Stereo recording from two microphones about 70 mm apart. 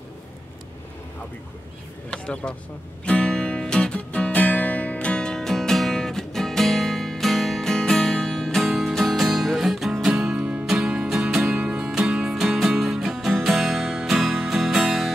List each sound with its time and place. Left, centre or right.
2.0 s speech: centre
3.1 s music: centre
10.3 s music: centre